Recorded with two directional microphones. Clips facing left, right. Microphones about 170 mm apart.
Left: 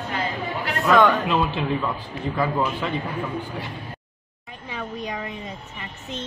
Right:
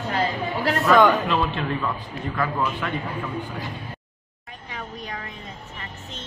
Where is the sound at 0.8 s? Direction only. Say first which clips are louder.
Even; centre (ahead or behind).